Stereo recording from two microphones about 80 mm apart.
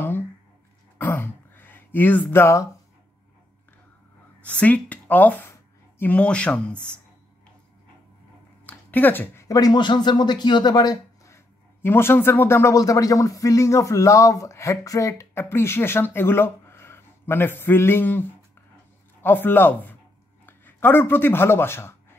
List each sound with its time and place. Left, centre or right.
0.9 s throat clearing: left
2.4 s speech: left
4.4 s speech: centre
8.6 s a sound: left
9.5 s speech: left
9.8 s speech: left
11.2 s a sound: left
12.7 s speech: left